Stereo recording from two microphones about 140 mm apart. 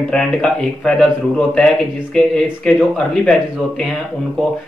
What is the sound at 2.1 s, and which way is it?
Speech, 5° left (ahead or behind).